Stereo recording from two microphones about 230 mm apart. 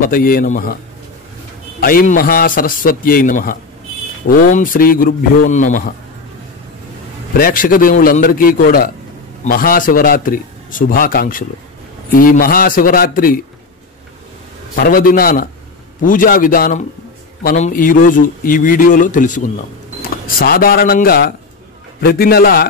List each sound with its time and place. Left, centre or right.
0.0 s a man's voice: left
1.8 s a man's voice: left
7.3 s a man's voice: left
14.8 s a man's voice: left